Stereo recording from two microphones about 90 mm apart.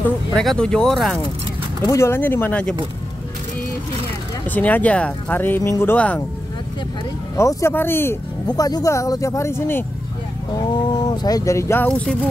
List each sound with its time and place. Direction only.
0.3 s speech: 5° left (ahead or behind)
1.9 s speech: 30° left (ahead or behind)
4.5 s speech: 20° left (ahead or behind)
5.6 s speech: 30° left (ahead or behind)
5.9 s speech: 15° left (ahead or behind)
7.3 s speech: 30° left (ahead or behind)
8.5 s speech: 45° left (ahead or behind); by 9.8 s 25° left (ahead or behind)
10.5 s speech: 50° left (ahead or behind); by 11.8 s 35° left (ahead or behind)
11.9 s speech: 5° left (ahead or behind)